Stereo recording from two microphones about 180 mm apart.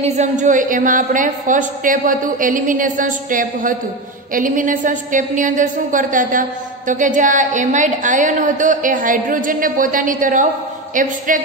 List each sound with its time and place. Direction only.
0.0 s a woman's voice: 40° right (ahead or behind)